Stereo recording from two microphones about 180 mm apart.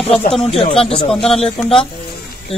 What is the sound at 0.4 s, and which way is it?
Speech, 30° left (ahead or behind).